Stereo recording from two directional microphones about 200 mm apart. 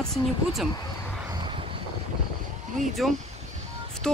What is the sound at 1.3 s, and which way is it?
Boat, 25° right (ahead or behind).